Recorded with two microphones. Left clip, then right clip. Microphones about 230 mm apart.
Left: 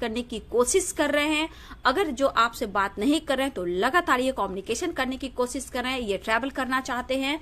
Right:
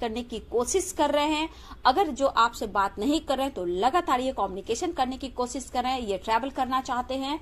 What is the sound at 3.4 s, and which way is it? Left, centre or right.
A woman's voice, left.